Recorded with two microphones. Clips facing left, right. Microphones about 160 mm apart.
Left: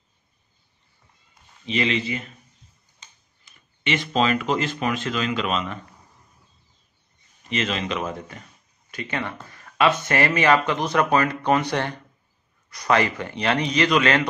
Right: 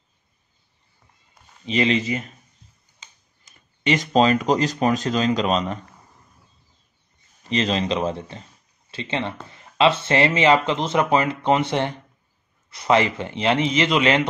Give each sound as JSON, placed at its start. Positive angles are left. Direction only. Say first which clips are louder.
{"t": 1.7, "sound": "speech", "louder": "right 3 dB", "side_deg": -35}
{"t": 3.4, "sound": "speech", "louder": "right 5 dB", "side_deg": -40}
{"t": 7.4, "sound": "speech", "louder": "right 4 dB", "side_deg": -35}